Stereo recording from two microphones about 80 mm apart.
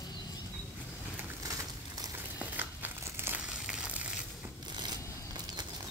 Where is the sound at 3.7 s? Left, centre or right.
Centre.